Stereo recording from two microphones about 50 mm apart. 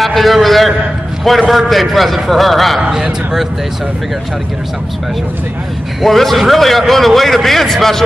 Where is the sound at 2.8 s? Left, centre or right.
Centre.